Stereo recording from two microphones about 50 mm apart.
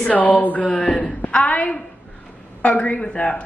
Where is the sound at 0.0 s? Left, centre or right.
Left.